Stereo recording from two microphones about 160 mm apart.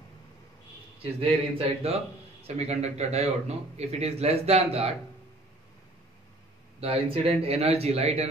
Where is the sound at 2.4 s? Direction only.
40° right (ahead or behind).